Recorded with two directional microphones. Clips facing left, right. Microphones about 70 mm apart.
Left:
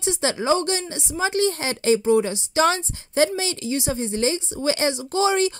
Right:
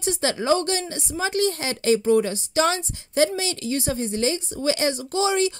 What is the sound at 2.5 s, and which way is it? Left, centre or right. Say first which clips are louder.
A woman's voice: left 2 dB; left.